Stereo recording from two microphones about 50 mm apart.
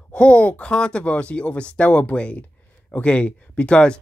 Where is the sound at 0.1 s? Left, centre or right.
Left.